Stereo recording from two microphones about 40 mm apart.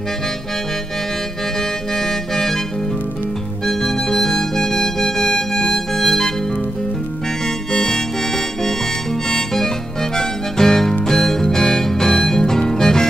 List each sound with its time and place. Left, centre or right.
2.0 s music: centre
3.6 s music: centre
9.3 s harmonica: centre
10.1 s music: centre